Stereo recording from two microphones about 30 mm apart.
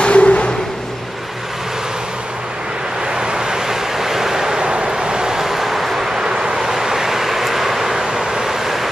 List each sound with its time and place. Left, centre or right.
0.0 s vehicle: left
3.2 s vehicle: right
4.0 s waves: centre
4.6 s vehicle: right
5.4 s vehicle: centre
6.1 s vehicle: right